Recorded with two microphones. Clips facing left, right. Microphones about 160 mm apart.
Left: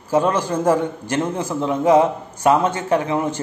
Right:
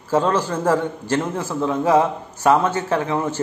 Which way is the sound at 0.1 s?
15° left (ahead or behind).